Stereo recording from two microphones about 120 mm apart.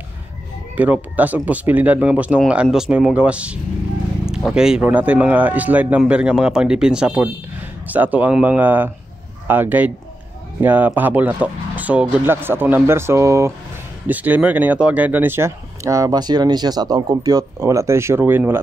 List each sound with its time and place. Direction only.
0.7 s speech: 15° right (ahead or behind)